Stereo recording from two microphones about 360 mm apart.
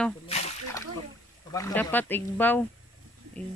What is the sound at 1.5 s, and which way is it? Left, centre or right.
Speech, centre.